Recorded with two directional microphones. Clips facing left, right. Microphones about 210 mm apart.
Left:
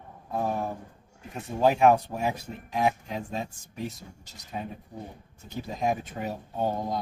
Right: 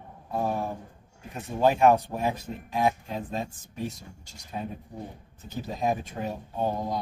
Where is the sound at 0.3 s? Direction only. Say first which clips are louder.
Right 1 dB; 10° right (ahead or behind).